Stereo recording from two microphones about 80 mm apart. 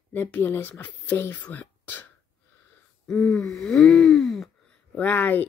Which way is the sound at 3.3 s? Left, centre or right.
Centre.